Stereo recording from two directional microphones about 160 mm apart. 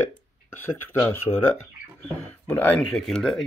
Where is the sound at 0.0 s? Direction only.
15° left (ahead or behind).